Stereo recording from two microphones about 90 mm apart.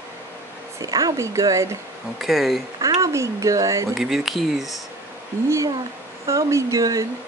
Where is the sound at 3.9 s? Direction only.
5° right (ahead or behind).